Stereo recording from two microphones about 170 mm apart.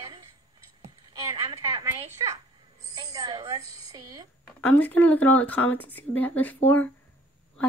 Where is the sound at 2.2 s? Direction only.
20° right (ahead or behind).